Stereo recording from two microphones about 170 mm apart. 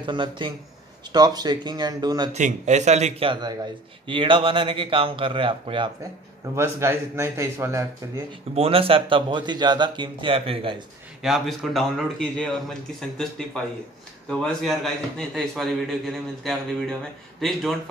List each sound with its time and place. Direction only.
0.0 s speech: 30° right (ahead or behind)
2.3 s a man's voice: 45° right (ahead or behind)
6.4 s a man's voice: 15° right (ahead or behind)
8.5 s a man's voice: 35° right (ahead or behind)
11.2 s a man's voice: centre (ahead or behind)
14.3 s a man's voice: 5° left (ahead or behind)